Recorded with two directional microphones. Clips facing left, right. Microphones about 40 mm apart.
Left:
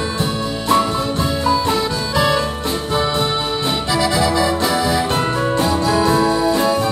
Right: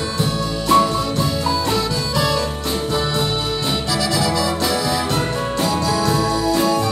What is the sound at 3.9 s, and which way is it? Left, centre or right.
Music, left.